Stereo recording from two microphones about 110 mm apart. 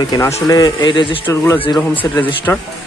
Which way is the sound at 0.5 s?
35° left (ahead or behind).